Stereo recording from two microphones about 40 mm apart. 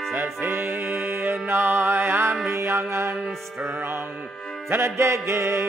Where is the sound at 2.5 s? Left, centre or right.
Right.